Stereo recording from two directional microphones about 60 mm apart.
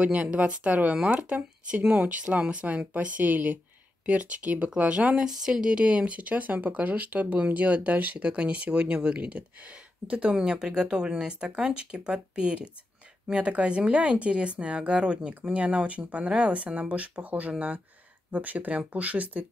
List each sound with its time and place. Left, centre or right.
0.0 s speech: right